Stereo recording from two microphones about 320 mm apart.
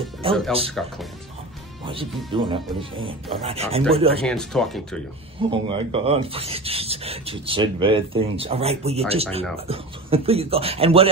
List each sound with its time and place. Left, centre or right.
0.5 s speech: centre
2.3 s speech: centre
4.2 s speech: centre
5.7 s speech: centre